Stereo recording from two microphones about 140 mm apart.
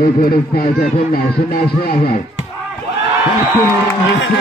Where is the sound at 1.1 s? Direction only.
90° left.